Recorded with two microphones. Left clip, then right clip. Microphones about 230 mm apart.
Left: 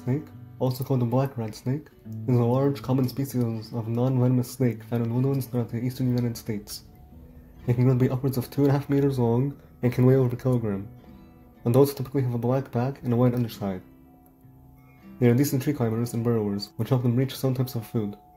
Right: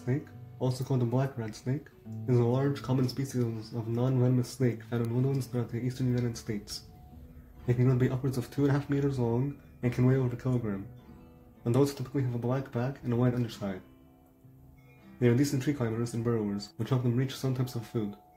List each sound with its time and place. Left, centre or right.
0.0 s speech: left
15.1 s speech: left